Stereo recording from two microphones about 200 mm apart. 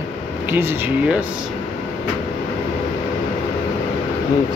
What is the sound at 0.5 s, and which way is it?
Speech, 10° right (ahead or behind).